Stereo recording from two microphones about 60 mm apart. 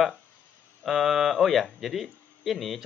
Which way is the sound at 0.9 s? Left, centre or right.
Centre.